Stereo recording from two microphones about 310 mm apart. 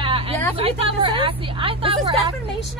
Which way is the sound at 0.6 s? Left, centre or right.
Centre.